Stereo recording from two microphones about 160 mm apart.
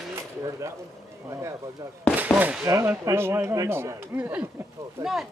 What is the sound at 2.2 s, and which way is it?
Speech, 10° right (ahead or behind).